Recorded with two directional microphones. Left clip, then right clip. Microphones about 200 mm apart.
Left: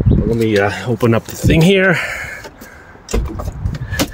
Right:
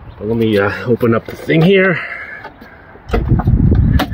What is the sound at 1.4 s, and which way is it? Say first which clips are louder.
Speech: right 1 dB; 20° left (ahead or behind).